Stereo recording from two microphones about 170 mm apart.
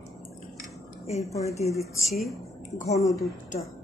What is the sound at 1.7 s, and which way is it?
Speech, centre (ahead or behind).